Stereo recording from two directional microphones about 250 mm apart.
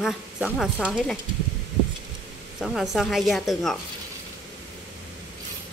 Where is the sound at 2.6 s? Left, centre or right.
Centre.